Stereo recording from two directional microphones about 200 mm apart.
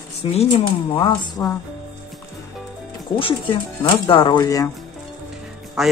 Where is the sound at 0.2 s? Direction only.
30° left (ahead or behind).